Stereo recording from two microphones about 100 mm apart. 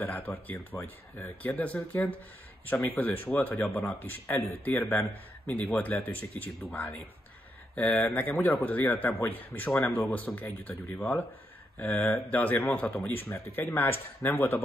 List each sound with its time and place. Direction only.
0.0 s speech: 20° left (ahead or behind)